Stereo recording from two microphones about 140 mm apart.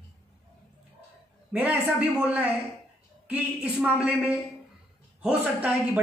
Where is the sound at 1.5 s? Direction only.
10° right (ahead or behind).